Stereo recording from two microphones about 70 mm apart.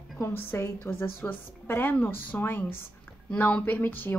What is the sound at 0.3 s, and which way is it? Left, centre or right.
A woman's voice, left.